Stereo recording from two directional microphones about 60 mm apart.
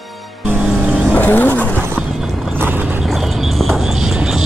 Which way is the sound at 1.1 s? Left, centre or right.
Left.